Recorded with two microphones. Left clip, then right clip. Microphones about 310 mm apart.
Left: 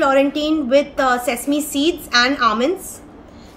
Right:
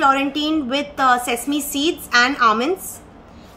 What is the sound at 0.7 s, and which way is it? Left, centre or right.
Speech, right.